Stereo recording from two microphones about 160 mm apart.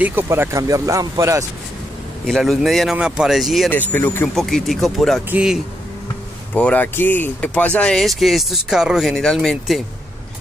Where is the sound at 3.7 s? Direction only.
10° left (ahead or behind).